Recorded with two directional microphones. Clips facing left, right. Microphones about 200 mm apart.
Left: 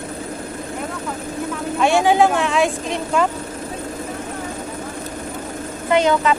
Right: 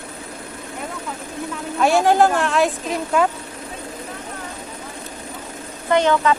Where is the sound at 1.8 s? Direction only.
Centre (ahead or behind).